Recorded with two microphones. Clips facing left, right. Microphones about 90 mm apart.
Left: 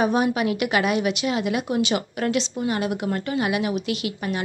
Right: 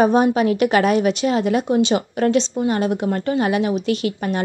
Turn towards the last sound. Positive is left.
turn(degrees=-40)  # may be behind; listen again after turning